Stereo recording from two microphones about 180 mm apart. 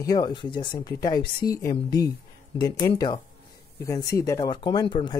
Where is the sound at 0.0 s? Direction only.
20° left (ahead or behind).